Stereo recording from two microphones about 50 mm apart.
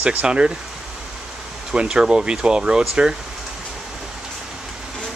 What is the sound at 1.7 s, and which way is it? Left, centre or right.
Speech, centre.